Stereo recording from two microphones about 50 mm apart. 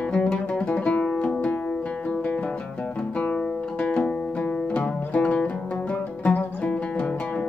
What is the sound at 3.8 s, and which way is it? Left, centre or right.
Music, centre.